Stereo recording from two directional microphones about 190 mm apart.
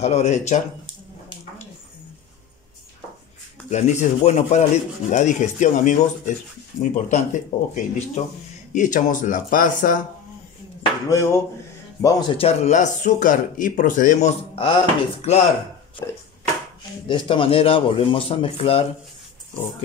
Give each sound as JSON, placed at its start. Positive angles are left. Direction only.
{"t": 0.0, "sound": "speech", "side_deg": 35}
{"t": 3.7, "sound": "speech", "side_deg": 40}
{"t": 11.1, "sound": "speech", "side_deg": 15}
{"t": 16.0, "sound": "speech", "side_deg": 15}
{"t": 17.1, "sound": "a man's voice", "side_deg": 25}